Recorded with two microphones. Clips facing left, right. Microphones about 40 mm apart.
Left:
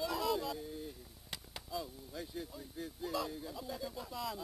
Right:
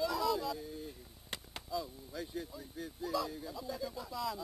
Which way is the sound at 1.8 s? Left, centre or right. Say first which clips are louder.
Right 2 dB; centre.